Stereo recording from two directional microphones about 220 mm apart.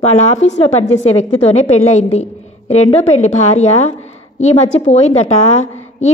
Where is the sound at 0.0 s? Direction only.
30° left (ahead or behind).